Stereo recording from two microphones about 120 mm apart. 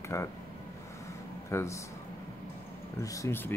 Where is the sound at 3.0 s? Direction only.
25° left (ahead or behind).